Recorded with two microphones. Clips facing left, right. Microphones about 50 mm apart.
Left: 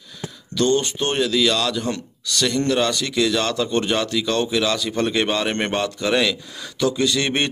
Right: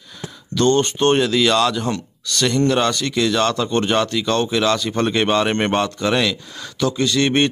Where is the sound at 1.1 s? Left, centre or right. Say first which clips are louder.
Right 1 dB; centre.